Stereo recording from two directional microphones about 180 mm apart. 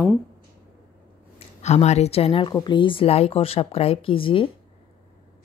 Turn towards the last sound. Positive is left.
turn(degrees=30)  # may be behind; listen again after turning